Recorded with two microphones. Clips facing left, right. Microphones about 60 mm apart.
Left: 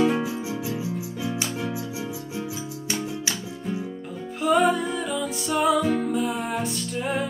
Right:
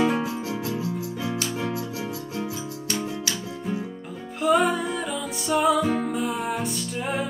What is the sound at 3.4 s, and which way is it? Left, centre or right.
Music, centre.